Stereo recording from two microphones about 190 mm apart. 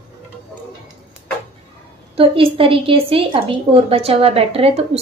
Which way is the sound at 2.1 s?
30° right (ahead or behind).